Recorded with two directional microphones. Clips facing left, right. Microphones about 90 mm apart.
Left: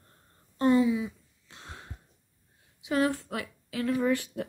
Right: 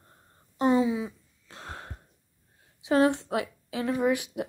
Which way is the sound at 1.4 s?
45° right (ahead or behind).